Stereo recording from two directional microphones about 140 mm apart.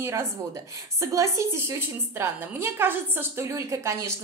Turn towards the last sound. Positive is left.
turn(degrees=-20)  # may be behind; listen again after turning